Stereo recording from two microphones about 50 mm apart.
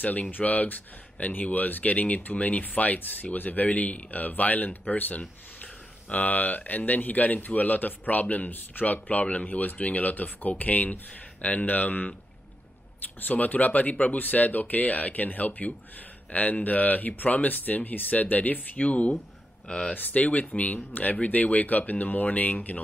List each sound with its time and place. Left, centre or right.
0.0 s speech: left
13.3 s speech: left